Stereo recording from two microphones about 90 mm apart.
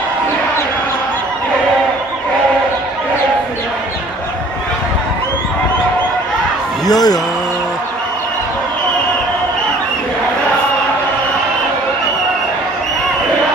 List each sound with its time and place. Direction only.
6.9 s a man's voice: 45° left (ahead or behind)